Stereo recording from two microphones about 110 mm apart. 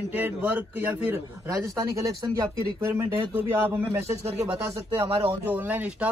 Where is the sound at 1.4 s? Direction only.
30° right (ahead or behind).